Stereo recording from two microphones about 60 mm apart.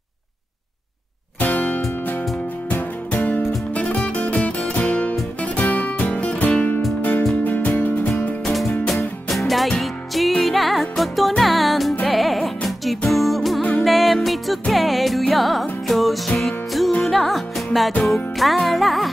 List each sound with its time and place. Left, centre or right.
1.4 s music: left
9.3 s music: centre
13.6 s music: centre
13.8 s music: centre